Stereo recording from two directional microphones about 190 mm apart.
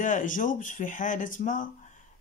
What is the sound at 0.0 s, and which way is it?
Speech, 45° left (ahead or behind).